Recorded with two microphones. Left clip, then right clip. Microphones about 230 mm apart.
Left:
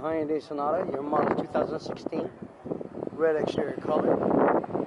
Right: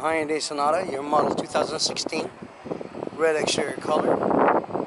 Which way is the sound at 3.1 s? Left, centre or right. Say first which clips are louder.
Right 3 dB; centre.